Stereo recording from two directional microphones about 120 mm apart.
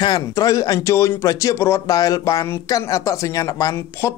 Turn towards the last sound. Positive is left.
turn(degrees=25)  # may be behind; listen again after turning